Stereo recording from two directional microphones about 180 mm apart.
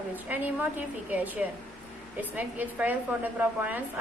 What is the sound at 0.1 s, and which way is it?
A woman's voice, 10° right (ahead or behind).